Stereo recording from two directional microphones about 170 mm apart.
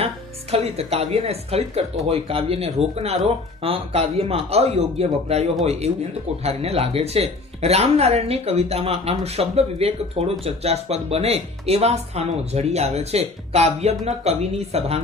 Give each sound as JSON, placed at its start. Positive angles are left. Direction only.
{"t": 0.0, "sound": "speech", "side_deg": -35}